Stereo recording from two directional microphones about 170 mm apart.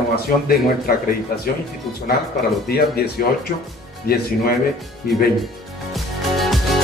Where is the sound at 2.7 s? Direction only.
65° left (ahead or behind).